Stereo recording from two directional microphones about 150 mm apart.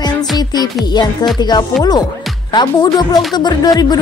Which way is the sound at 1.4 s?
30° left (ahead or behind).